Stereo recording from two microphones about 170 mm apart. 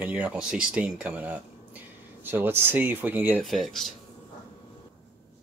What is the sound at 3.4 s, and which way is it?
Speech, centre (ahead or behind).